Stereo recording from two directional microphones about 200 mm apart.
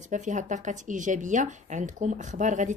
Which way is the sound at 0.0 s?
40° right (ahead or behind).